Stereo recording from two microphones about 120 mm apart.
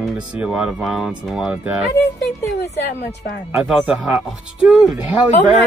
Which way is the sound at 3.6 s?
5° right (ahead or behind).